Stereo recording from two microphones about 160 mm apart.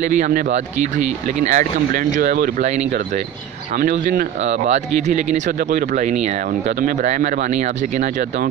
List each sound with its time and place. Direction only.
0.0 s speech: 50° right (ahead or behind)
3.7 s speech: 60° right (ahead or behind)
4.5 s speech: 45° right (ahead or behind)